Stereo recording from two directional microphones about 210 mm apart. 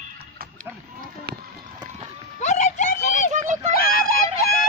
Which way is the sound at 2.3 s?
35° left (ahead or behind).